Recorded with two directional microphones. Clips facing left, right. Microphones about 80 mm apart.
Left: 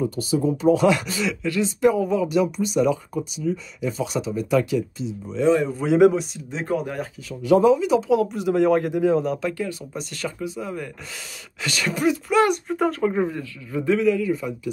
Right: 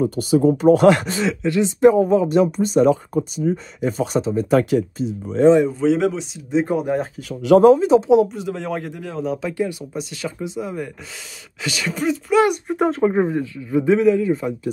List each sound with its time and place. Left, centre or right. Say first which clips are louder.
0.1 s speech: right 6 dB; right
4.6 s speech: right 3 dB; right
5.7 s speech: left 2 dB; centre
6.3 s speech: right 6 dB; centre
7.2 s speech: right 5 dB; right
8.3 s speech: left 7 dB; centre
9.2 s speech: right 1 dB; centre
9.5 s a man's voice: right 5 dB; centre
9.9 s speech: right 2 dB; centre
10.4 s a man's voice: right 5 dB; right
11.6 s speech: even; centre
12.6 s a man's voice: right 4 dB; right